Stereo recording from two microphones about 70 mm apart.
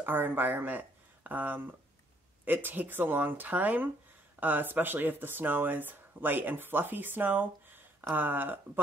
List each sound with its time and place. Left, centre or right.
0.0 s speech: right